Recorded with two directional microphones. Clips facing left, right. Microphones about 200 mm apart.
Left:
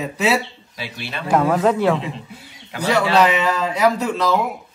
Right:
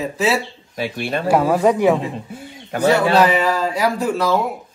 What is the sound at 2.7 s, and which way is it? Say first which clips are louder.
Speech: right 4 dB; 50° right (ahead or behind).